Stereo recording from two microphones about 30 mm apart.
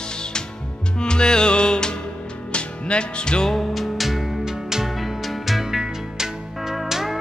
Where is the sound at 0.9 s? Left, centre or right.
Left.